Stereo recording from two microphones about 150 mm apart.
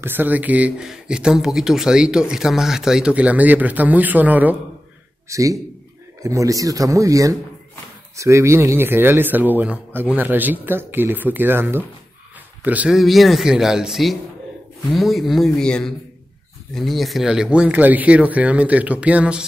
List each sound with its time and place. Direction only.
0.0 s speech: 15° right (ahead or behind)
5.3 s speech: 20° right (ahead or behind)